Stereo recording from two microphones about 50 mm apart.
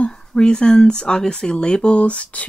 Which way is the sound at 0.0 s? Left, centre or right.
Centre.